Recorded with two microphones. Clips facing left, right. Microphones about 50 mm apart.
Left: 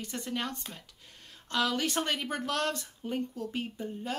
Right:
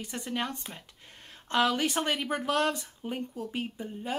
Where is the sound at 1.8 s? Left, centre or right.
Centre.